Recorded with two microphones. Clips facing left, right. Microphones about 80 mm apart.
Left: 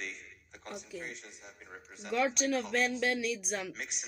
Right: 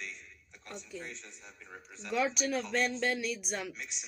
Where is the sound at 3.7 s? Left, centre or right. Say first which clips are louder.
Left 2 dB; left.